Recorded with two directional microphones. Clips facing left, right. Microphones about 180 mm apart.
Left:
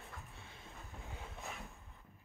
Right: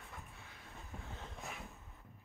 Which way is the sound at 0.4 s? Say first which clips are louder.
Left 1 dB; 25° left (ahead or behind).